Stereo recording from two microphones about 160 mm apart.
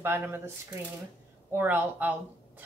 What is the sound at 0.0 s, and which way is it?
Speech, 15° right (ahead or behind).